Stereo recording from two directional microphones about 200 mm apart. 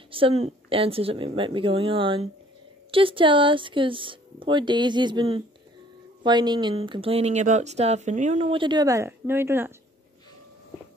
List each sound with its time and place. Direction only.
0.1 s speech: 30° right (ahead or behind); by 9.7 s 10° right (ahead or behind)